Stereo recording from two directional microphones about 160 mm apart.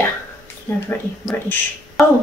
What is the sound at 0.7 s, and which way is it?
Speech, 15° left (ahead or behind).